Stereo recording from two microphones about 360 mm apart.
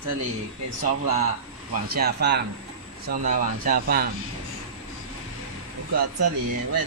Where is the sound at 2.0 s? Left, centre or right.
Right.